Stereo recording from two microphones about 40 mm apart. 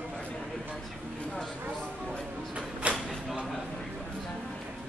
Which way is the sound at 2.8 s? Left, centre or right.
Right.